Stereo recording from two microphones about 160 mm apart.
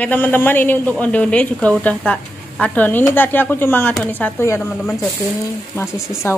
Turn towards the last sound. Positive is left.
turn(degrees=15)  # may be behind; listen again after turning